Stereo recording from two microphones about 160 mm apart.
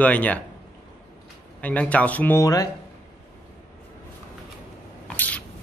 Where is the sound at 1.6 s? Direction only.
10° left (ahead or behind).